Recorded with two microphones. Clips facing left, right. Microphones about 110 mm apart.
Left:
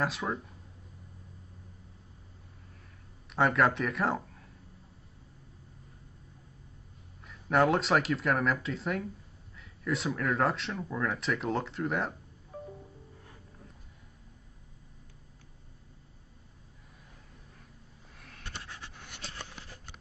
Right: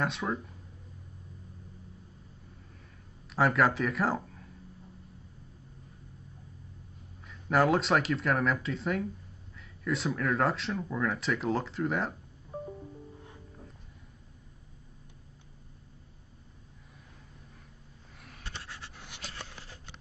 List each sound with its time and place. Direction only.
0.0 s speech: centre (ahead or behind)
3.3 s speech: centre (ahead or behind)
7.2 s speech: centre (ahead or behind)
12.5 s music: 30° right (ahead or behind)